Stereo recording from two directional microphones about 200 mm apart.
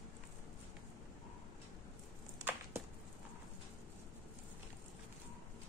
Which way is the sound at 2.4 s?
10° right (ahead or behind).